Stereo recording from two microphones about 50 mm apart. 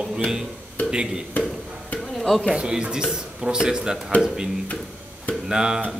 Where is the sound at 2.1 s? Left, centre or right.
Centre.